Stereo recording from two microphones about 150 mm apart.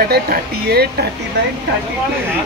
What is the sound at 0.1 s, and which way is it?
Speech, 90° right.